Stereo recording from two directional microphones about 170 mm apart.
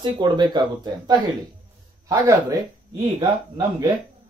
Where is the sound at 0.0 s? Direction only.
25° right (ahead or behind).